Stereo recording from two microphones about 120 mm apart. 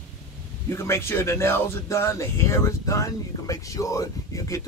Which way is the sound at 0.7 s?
20° left (ahead or behind).